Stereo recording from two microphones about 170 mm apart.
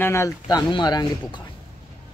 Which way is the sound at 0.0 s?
15° left (ahead or behind).